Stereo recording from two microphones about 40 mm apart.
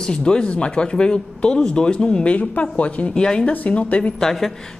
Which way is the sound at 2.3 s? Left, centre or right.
Left.